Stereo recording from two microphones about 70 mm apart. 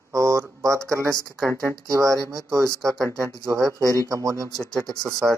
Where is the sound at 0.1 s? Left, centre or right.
Right.